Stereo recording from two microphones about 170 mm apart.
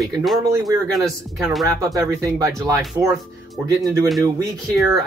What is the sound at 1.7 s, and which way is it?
Speech, 20° right (ahead or behind).